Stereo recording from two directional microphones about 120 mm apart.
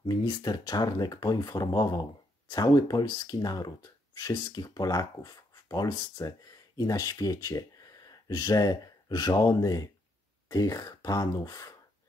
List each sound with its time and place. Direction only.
0.1 s speech: 35° left (ahead or behind)